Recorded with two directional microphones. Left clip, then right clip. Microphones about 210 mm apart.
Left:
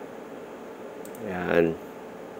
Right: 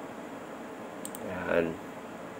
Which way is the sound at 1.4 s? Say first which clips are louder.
Left 6 dB; 35° left (ahead or behind).